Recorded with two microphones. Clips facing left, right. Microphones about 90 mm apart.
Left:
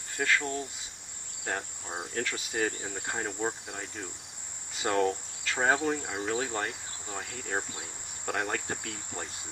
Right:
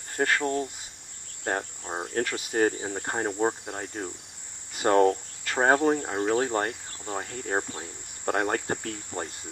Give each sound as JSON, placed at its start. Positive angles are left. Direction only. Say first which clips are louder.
{"t": 0.1, "sound": "cricket", "louder": "right 4 dB", "side_deg": -45}
{"t": 1.4, "sound": "cricket", "louder": "right 5 dB", "side_deg": -35}
{"t": 2.2, "sound": "cricket", "louder": "right 8 dB", "side_deg": -45}